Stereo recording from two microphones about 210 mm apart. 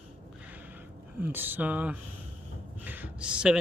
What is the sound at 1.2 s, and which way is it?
Speech, 10° right (ahead or behind).